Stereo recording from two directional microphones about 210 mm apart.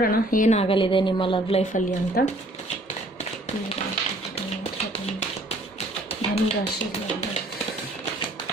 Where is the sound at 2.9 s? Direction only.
30° left (ahead or behind).